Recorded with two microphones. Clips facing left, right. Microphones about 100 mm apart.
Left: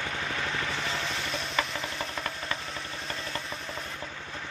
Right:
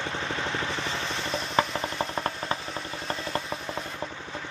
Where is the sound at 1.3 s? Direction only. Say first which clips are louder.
Right 8 dB; 35° right (ahead or behind).